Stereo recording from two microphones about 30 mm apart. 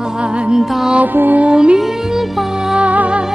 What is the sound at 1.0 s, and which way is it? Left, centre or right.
Music, right.